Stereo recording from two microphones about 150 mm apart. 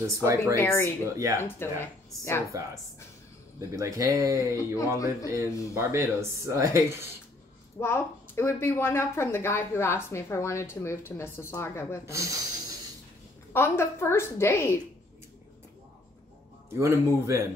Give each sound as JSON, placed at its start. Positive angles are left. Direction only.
{"t": 0.0, "sound": "speech", "side_deg": -20}
{"t": 0.6, "sound": "a woman's voice", "side_deg": 15}
{"t": 1.1, "sound": "speech", "side_deg": -20}
{"t": 1.6, "sound": "a woman's voice", "side_deg": 15}
{"t": 3.5, "sound": "speech", "side_deg": -20}
{"t": 4.7, "sound": "music", "side_deg": 20}
{"t": 5.8, "sound": "speech", "side_deg": -20}
{"t": 7.8, "sound": "a woman's voice", "side_deg": 15}
{"t": 12.1, "sound": "speech", "side_deg": -20}
{"t": 13.5, "sound": "a woman's voice", "side_deg": 15}
{"t": 16.7, "sound": "speech", "side_deg": -20}